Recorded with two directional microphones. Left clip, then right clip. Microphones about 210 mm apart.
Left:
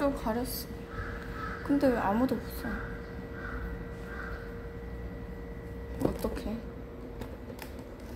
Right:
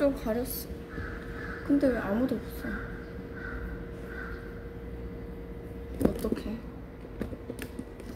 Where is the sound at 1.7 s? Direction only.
20° left (ahead or behind).